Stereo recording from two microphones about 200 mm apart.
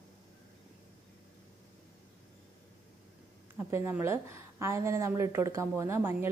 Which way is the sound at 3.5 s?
10° right (ahead or behind).